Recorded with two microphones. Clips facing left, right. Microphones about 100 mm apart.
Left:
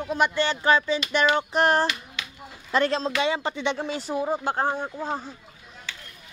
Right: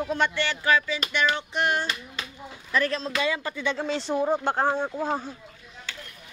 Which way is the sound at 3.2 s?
25° left (ahead or behind).